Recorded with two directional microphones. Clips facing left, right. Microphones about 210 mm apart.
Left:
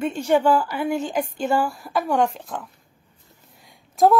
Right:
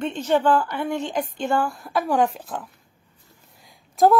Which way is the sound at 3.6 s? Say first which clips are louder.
Even; centre (ahead or behind).